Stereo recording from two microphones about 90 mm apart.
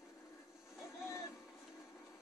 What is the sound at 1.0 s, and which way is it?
Music, 35° left (ahead or behind).